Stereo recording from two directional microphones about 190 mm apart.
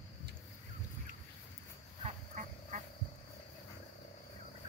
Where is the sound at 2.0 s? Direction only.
40° right (ahead or behind).